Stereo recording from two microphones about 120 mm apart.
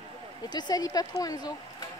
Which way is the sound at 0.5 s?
35° left (ahead or behind).